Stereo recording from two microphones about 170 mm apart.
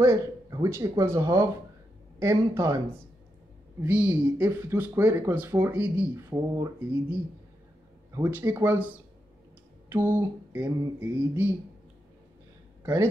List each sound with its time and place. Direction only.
0.0 s speech: 20° right (ahead or behind)
6.3 s speech: 20° right (ahead or behind)
8.2 s speech: 10° right (ahead or behind)
9.8 s a sound: 15° right (ahead or behind)
11.0 s speech: 10° right (ahead or behind)
12.8 s speech: 15° right (ahead or behind)